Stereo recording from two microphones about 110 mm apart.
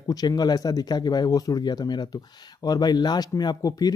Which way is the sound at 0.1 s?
35° left (ahead or behind).